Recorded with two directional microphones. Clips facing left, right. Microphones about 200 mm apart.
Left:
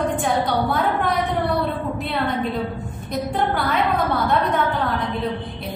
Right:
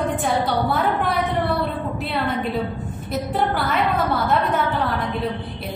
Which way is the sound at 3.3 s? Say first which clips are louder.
Even; centre (ahead or behind).